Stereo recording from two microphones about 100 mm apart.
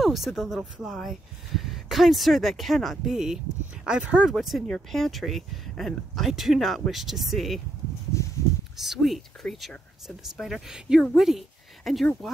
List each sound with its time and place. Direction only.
0.0 s speech: centre (ahead or behind)
4.4 s speech: centre (ahead or behind)
8.1 s a sound: 30° left (ahead or behind)
8.7 s speech: 5° right (ahead or behind)